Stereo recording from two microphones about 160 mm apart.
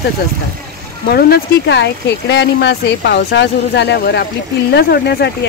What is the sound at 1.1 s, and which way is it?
Speech, 80° left.